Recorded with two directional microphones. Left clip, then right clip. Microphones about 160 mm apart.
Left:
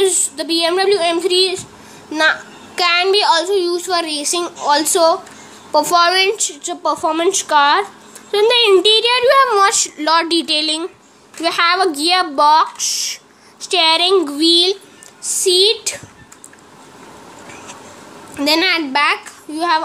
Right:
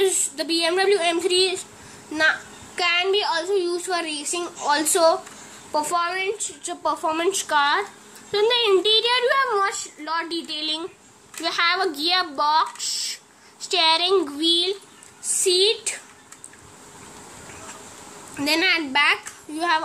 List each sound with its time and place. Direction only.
0.0 s a woman's voice: centre (ahead or behind)
5.7 s a woman's voice: 10° left (ahead or behind)
5.9 s speech: 35° left (ahead or behind)
6.6 s a woman's voice: 5° left (ahead or behind)
9.9 s a woman's voice: 30° left (ahead or behind); by 14.1 s 10° left (ahead or behind)
14.5 s a woman's voice: 25° left (ahead or behind)
15.4 s speech: 5° left (ahead or behind)
18.3 s speech: 5° left (ahead or behind)